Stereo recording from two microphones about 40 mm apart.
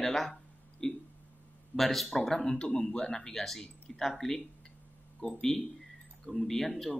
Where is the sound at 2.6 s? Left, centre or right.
Left.